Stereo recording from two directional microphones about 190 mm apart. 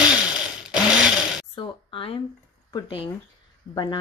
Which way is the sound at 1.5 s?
30° left (ahead or behind).